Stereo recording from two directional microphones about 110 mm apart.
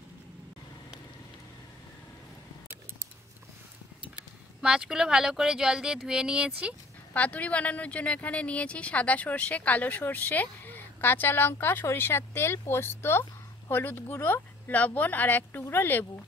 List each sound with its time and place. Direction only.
4.6 s speech: 5° right (ahead or behind)
7.2 s a woman's voice: 10° left (ahead or behind)